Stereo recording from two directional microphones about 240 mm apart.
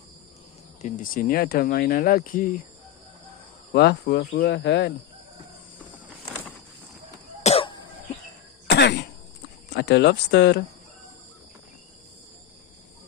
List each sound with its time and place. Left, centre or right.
0.8 s speech: left
3.7 s speech: left
7.4 s cough: left
8.6 s cough: left
9.8 s speech: left